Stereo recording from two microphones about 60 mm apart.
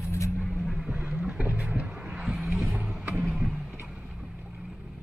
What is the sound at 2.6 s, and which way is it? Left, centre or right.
Vehicle, right.